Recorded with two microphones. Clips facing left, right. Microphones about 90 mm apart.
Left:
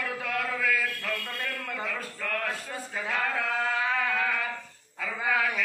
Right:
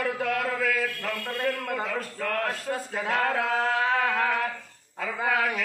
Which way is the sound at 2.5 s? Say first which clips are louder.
Right 4 dB; 60° right (ahead or behind).